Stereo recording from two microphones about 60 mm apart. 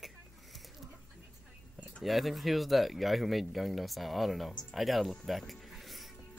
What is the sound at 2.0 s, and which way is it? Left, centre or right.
Speech, centre.